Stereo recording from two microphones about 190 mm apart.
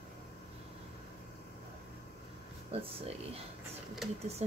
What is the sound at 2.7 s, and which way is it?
Speech, 30° right (ahead or behind).